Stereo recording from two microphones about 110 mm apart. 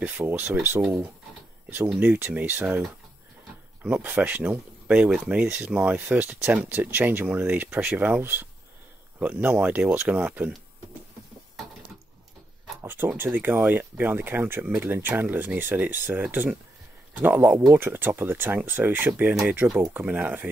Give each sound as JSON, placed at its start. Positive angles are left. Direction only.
{"t": 0.0, "sound": "speech", "side_deg": -15}
{"t": 2.0, "sound": "speech", "side_deg": -20}
{"t": 3.8, "sound": "speech", "side_deg": -15}
{"t": 12.8, "sound": "speech", "side_deg": -20}